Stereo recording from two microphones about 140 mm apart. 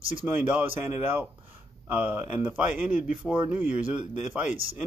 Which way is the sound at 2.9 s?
60° left (ahead or behind).